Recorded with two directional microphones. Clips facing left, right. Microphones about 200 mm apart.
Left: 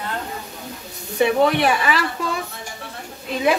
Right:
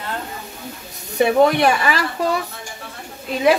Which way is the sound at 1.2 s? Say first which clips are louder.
Right 2 dB; 45° right (ahead or behind).